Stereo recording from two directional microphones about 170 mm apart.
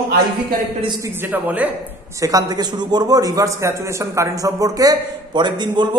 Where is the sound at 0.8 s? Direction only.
25° right (ahead or behind).